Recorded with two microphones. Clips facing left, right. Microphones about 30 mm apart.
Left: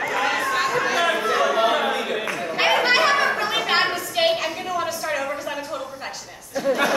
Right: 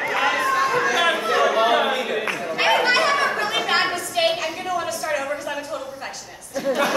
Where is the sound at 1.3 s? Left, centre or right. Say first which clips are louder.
Right 3 dB; centre.